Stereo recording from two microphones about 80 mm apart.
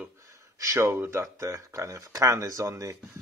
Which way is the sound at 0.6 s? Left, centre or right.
Right.